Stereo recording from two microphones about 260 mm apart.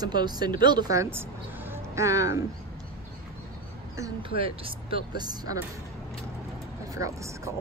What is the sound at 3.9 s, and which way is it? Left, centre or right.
Speech, centre.